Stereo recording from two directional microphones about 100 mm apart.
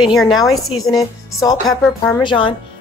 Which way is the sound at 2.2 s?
55° left (ahead or behind).